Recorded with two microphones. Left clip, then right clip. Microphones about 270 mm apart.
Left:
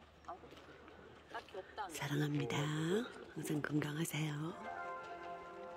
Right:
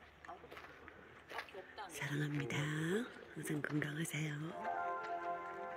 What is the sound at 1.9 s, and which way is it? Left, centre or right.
Speech, centre.